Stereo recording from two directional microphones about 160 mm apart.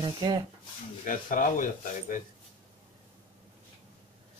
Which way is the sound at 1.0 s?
55° left (ahead or behind).